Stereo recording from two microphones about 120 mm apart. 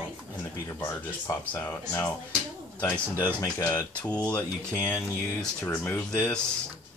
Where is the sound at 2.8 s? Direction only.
15° left (ahead or behind).